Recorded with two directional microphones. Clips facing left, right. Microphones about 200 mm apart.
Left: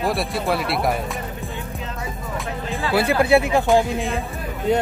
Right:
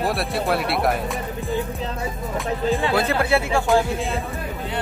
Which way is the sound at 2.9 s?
10° left (ahead or behind).